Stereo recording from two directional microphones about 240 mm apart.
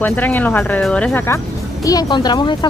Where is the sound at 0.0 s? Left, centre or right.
Centre.